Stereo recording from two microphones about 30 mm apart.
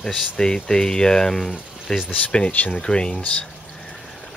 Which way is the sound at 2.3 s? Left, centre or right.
Left.